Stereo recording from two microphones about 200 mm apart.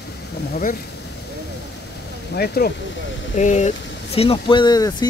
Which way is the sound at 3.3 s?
35° left (ahead or behind).